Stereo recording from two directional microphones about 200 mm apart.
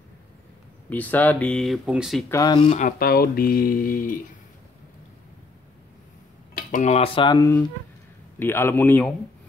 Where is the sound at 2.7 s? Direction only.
40° left (ahead or behind).